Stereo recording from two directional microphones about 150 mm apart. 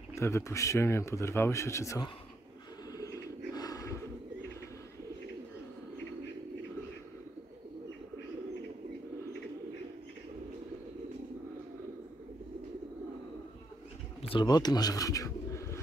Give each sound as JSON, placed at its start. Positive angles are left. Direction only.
{"t": 0.1, "sound": "speech", "side_deg": 20}
{"t": 3.0, "sound": "a sound", "side_deg": 25}
{"t": 14.3, "sound": "speech", "side_deg": 25}